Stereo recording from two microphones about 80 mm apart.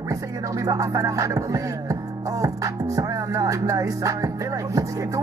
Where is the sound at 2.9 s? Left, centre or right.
Right.